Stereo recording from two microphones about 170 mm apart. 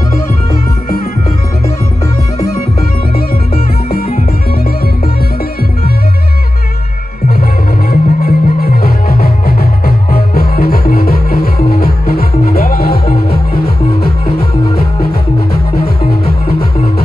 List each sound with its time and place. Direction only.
3.2 s music: 65° left (ahead or behind)
7.9 s music: 60° left (ahead or behind)